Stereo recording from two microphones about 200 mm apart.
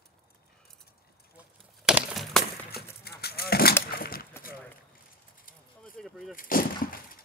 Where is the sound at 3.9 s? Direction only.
45° left (ahead or behind).